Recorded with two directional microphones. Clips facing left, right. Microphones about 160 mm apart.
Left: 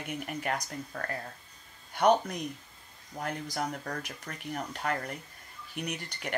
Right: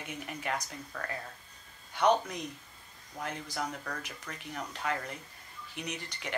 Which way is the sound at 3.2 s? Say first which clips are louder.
Left 3 dB; 45° left (ahead or behind).